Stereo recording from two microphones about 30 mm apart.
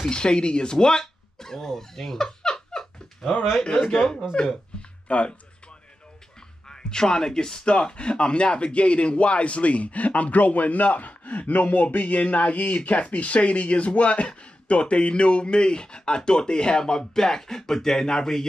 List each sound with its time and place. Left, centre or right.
0.1 s speech: left; by 2.3 s centre
2.7 s a sound: centre
3.2 s speech: centre
5.0 s speech: left
6.7 s speech: left
7.6 s speech: left